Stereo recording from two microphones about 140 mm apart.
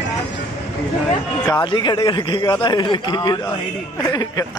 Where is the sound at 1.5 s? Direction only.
35° left (ahead or behind).